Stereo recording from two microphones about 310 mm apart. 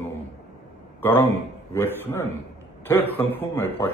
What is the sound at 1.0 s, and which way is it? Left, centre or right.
A man's voice, centre.